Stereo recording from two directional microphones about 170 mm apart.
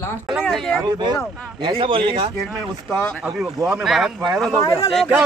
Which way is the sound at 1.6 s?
30° right (ahead or behind).